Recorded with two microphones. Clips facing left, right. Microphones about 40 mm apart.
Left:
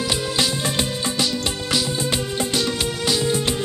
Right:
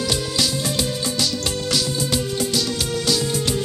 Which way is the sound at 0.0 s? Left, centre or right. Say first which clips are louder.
Even; left.